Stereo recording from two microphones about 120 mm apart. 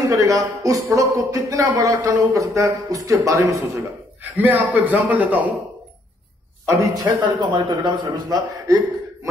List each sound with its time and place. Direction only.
0.0 s speech: 30° right (ahead or behind)
4.2 s a man's voice: 15° right (ahead or behind)
7.0 s a man's voice: 40° right (ahead or behind)